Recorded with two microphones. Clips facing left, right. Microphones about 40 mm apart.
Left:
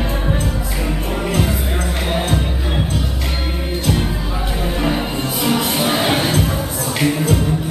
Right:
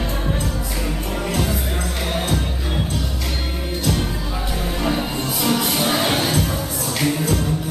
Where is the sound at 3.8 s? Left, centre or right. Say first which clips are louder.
Left 2 dB; centre.